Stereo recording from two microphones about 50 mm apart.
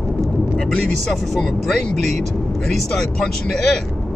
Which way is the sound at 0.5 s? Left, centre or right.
Centre.